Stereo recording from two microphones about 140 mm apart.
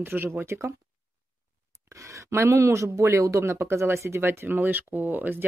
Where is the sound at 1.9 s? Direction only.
20° right (ahead or behind).